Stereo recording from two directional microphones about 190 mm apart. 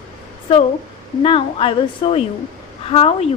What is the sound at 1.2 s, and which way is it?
A woman's voice, 30° left (ahead or behind).